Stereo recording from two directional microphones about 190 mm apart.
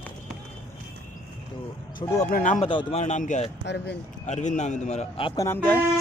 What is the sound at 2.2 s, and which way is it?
Speech, 45° left (ahead or behind).